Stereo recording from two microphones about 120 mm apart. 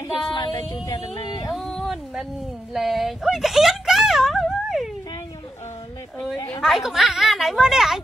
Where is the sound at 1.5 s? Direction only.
Centre (ahead or behind).